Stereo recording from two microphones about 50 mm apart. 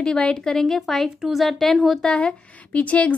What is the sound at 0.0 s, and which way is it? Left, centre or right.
A woman's voice, centre.